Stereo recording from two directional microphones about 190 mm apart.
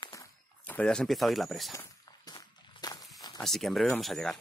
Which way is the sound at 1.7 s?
20° left (ahead or behind).